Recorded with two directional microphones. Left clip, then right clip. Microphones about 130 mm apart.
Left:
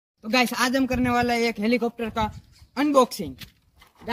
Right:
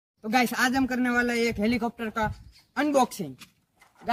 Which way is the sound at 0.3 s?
25° right (ahead or behind).